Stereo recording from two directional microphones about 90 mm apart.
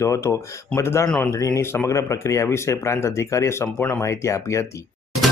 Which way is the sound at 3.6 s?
10° left (ahead or behind).